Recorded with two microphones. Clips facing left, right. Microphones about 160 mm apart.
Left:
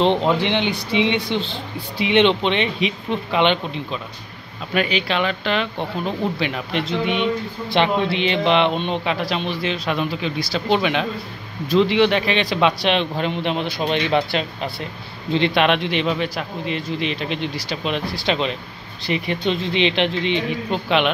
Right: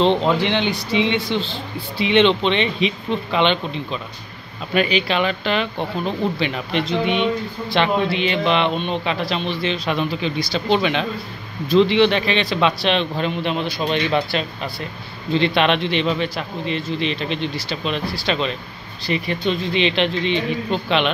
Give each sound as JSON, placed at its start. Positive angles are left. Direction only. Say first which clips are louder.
{"t": 0.0, "sound": "speech", "louder": "right 1 dB", "side_deg": 15}
{"t": 4.7, "sound": "speech", "louder": "right 2 dB", "side_deg": 0}
{"t": 7.7, "sound": "speech", "louder": "even", "side_deg": 20}
{"t": 9.0, "sound": "speech", "louder": "even", "side_deg": 10}